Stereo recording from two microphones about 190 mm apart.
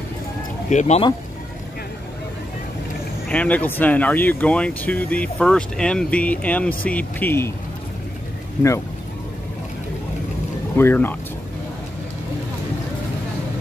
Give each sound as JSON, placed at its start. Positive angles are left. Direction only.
{"t": 0.7, "sound": "speech", "side_deg": 40}
{"t": 3.3, "sound": "speech", "side_deg": 5}
{"t": 10.8, "sound": "speech", "side_deg": 10}